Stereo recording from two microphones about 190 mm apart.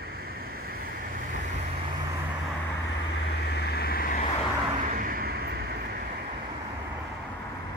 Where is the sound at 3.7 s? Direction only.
55° left (ahead or behind).